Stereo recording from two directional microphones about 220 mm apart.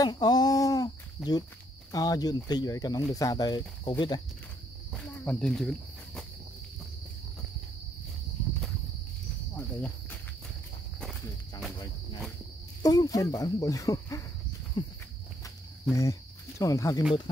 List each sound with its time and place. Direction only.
0.0 s speech: 20° left (ahead or behind)
4.9 s speech: 5° left (ahead or behind)
9.6 s speech: 5° left (ahead or behind)
12.8 s speech: 15° left (ahead or behind)
14.8 s a sound: 20° left (ahead or behind)
15.9 s speech: 15° left (ahead or behind)